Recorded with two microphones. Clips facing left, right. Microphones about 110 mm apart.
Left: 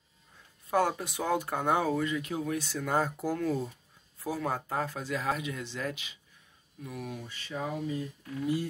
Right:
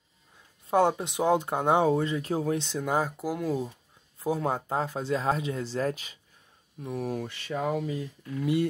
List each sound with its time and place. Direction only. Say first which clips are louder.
0.7 s speech: right 4 dB; 25° right (ahead or behind)
4.2 s speech: right 4 dB; 25° right (ahead or behind)
7.2 s speech: right 6 dB; 70° right (ahead or behind)